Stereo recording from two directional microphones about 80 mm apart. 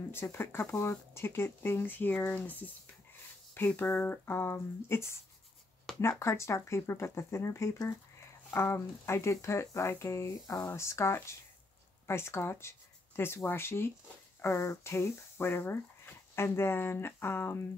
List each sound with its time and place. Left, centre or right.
0.1 s speech: left
10.3 s speech: left